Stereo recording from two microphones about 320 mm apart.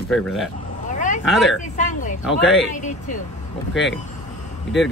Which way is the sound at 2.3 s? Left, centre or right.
Centre.